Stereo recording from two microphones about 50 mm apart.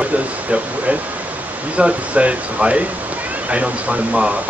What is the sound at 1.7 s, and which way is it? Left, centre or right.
Speech, right.